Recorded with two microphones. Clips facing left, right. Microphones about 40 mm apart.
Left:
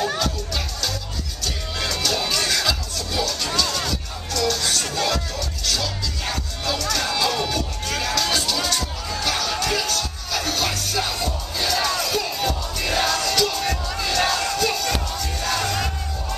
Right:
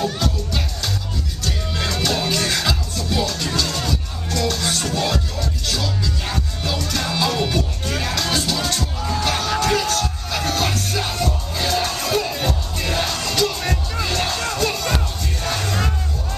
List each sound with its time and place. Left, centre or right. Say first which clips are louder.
1.8 s music: right 2 dB; centre
6.9 s music: right 1 dB; centre
8.2 s music: right 1 dB; right
14.3 s battle cry: even; right
15.4 s crowd: left 1 dB; right